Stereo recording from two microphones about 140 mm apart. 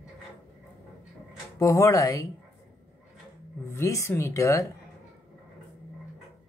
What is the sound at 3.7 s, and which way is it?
Speech, 20° left (ahead or behind).